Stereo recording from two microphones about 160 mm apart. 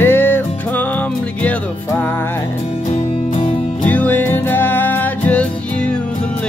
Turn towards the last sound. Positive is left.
turn(degrees=10)  # may be behind; listen again after turning